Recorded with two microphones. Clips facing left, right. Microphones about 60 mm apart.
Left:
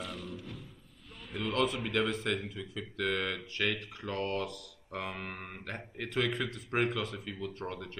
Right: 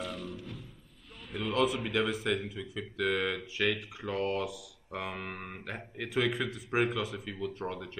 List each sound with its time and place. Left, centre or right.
0.0 s music: centre
1.3 s speech: centre